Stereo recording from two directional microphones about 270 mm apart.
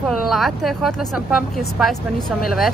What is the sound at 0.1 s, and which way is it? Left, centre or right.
Speech, centre.